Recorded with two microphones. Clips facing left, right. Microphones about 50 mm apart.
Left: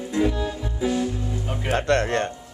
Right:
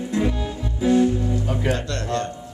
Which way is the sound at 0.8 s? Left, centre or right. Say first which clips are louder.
Right 7 dB; right.